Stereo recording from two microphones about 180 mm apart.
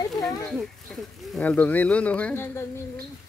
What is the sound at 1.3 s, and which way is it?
Speech, 10° left (ahead or behind).